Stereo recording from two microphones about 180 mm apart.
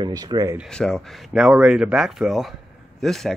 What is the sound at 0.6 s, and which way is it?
Speech, 5° left (ahead or behind).